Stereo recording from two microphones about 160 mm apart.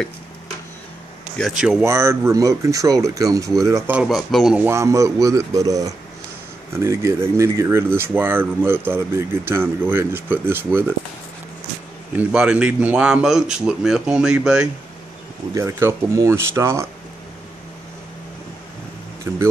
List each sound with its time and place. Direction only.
1.4 s a man's voice: 5° right (ahead or behind)
1.9 s speech: 15° right (ahead or behind)
3.9 s a man's voice: 5° right (ahead or behind)
4.6 s speech: 15° right (ahead or behind)
12.2 s a man's voice: 5° right (ahead or behind)
15.5 s speech: 20° right (ahead or behind)